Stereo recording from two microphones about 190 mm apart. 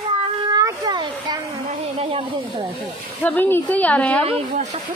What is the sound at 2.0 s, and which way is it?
Speech, 30° right (ahead or behind).